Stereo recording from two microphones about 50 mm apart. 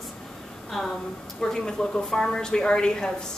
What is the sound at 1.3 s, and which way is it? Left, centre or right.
A woman's voice, centre.